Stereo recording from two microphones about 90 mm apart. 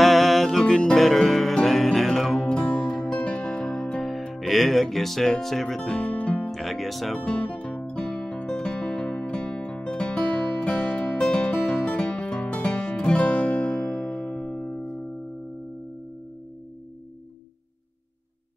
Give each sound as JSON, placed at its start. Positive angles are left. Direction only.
{"t": 0.0, "sound": "music", "side_deg": 0}
{"t": 6.5, "sound": "music", "side_deg": 0}
{"t": 7.2, "sound": "music", "side_deg": 15}